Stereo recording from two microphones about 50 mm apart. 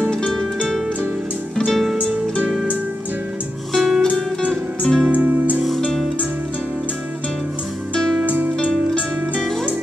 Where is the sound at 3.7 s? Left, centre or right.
Centre.